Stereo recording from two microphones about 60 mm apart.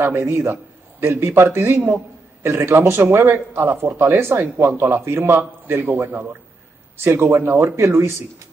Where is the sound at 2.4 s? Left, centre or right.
Right.